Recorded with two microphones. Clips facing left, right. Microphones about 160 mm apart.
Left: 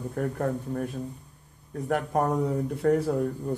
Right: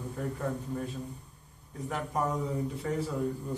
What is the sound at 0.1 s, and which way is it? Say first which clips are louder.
Speech: left 6 dB; 60° left (ahead or behind).